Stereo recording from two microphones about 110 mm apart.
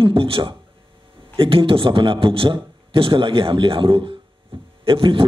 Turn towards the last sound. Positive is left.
turn(degrees=-55)  # may be behind; listen again after turning